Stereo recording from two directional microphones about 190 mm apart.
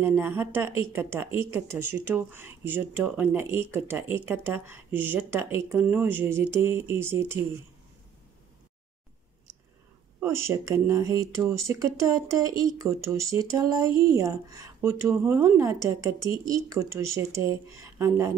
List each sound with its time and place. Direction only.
0.0 s speech: 10° right (ahead or behind)
10.2 s speech: 15° right (ahead or behind)